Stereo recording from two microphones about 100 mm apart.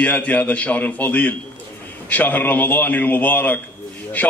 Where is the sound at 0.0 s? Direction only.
15° left (ahead or behind).